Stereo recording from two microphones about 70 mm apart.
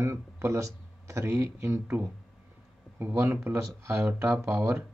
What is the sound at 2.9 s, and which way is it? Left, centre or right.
Speech, right.